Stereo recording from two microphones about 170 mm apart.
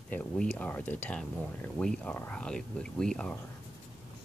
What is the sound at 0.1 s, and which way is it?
Speech, 5° left (ahead or behind).